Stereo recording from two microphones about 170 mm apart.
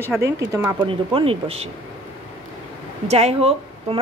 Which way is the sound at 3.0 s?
40° right (ahead or behind).